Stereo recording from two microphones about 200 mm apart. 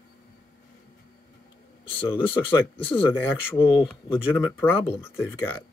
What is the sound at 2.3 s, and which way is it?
Speech, 10° left (ahead or behind).